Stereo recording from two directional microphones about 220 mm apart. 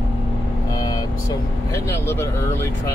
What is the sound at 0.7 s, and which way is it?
Vehicle, 20° left (ahead or behind).